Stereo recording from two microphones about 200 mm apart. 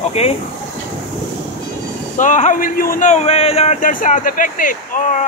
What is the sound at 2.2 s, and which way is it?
Speech, 40° left (ahead or behind).